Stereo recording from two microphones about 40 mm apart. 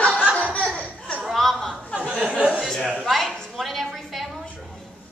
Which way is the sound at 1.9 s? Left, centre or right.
Right.